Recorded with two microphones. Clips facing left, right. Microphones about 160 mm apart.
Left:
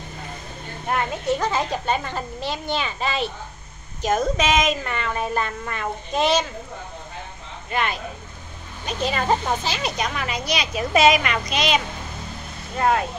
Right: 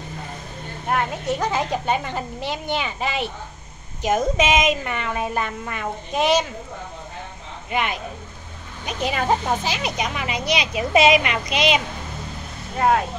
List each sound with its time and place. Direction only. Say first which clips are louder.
1.2 s a woman's voice: even; 15° right (ahead or behind)
7.7 s a woman's voice: right 1 dB; 15° right (ahead or behind)
12.7 s speech: right 2 dB; 5° right (ahead or behind)